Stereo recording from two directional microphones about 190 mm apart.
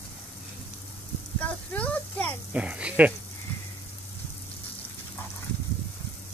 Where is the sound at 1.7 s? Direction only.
10° left (ahead or behind).